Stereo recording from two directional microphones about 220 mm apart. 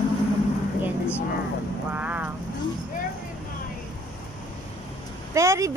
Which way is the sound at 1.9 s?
5° right (ahead or behind).